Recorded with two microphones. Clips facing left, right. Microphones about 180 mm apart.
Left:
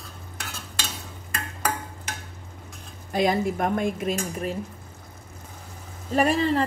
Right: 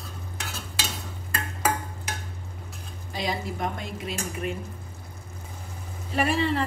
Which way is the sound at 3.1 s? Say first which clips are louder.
Left 8 dB; 50° left (ahead or behind).